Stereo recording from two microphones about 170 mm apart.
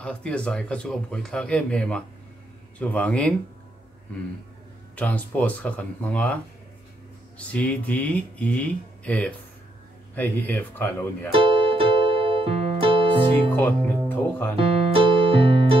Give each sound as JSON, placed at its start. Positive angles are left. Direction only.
{"t": 0.0, "sound": "speech", "side_deg": 5}
{"t": 4.9, "sound": "speech", "side_deg": 10}
{"t": 11.3, "sound": "music", "side_deg": -30}
{"t": 13.6, "sound": "speech", "side_deg": 10}
{"t": 15.0, "sound": "music", "side_deg": -30}